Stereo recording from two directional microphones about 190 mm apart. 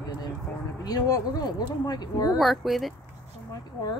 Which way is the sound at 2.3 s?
Centre (ahead or behind).